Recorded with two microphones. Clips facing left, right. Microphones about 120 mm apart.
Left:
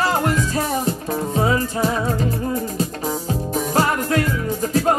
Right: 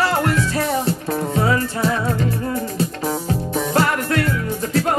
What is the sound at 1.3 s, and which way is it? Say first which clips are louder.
Music: left 1 dB; 20° left (ahead or behind).